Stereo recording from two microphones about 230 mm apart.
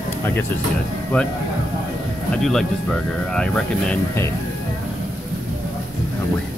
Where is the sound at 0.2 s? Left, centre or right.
Centre.